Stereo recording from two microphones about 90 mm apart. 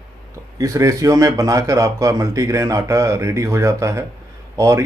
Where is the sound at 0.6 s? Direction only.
35° right (ahead or behind).